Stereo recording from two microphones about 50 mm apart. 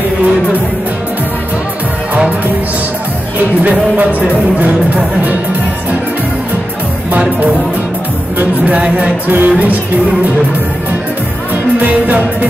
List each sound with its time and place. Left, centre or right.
3.6 s speech: right
7.1 s speech: right
11.8 s speech: right